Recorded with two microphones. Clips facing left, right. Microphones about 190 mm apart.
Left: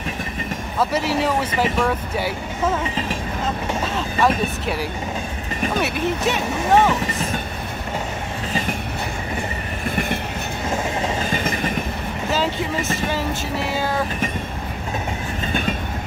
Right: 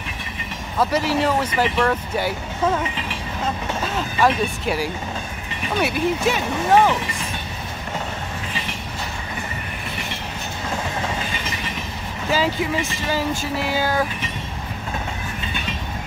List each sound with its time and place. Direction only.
0.7 s speech: 5° left (ahead or behind)
4.2 s speech: centre (ahead or behind)
9.8 s train: 50° left (ahead or behind)
11.3 s train: 50° left (ahead or behind)
12.3 s speech: 5° right (ahead or behind)